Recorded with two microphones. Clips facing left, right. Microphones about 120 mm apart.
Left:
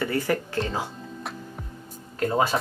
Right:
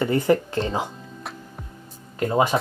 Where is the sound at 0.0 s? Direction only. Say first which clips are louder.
Right 6 dB; 20° right (ahead or behind).